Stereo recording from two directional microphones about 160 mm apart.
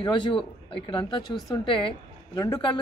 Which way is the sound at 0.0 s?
30° left (ahead or behind).